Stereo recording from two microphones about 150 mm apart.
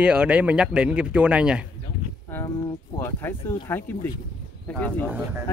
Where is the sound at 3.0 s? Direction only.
15° left (ahead or behind).